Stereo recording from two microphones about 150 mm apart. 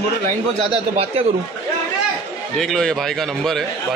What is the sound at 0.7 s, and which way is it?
Speech, 40° right (ahead or behind).